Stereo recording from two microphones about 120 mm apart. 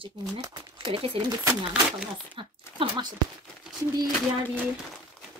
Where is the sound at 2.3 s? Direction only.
45° right (ahead or behind).